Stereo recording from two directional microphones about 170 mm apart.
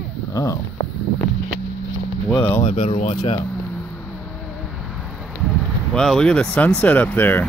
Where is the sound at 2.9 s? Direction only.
30° left (ahead or behind).